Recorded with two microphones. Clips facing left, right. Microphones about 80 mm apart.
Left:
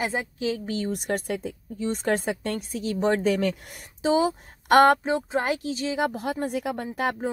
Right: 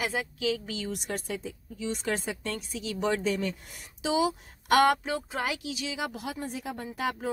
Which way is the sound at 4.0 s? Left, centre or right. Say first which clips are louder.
Left 5 dB; left.